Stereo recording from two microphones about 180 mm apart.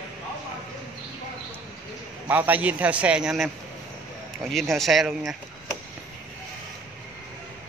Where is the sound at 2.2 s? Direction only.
10° right (ahead or behind).